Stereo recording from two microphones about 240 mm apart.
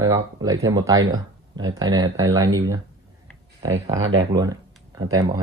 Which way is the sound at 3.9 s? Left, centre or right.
Right.